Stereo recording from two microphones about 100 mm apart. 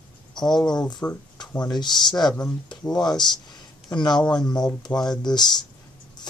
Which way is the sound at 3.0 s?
45° left (ahead or behind).